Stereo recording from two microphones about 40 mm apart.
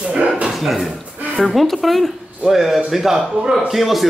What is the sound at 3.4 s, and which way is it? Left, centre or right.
Speech, right.